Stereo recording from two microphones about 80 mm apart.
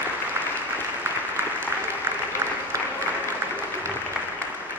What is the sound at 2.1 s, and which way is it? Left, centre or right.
Applause, right.